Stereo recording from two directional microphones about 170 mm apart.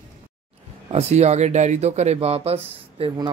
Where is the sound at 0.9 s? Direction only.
40° right (ahead or behind).